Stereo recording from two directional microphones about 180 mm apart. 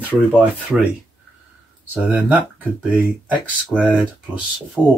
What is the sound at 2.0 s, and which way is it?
Speech, 10° right (ahead or behind).